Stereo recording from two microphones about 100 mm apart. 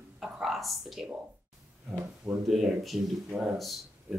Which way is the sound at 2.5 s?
Centre (ahead or behind).